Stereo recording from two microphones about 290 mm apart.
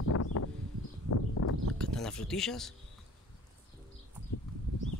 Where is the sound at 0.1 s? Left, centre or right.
Left.